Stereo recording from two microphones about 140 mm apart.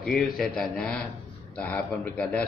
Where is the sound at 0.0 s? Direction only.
5° left (ahead or behind).